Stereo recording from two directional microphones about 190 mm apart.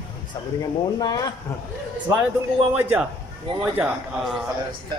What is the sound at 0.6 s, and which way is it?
Speech, 20° left (ahead or behind).